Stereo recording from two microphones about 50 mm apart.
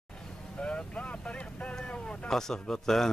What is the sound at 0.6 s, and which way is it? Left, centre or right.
Speech, left.